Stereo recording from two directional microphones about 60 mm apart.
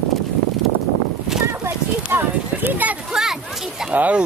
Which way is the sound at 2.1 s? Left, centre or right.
Right.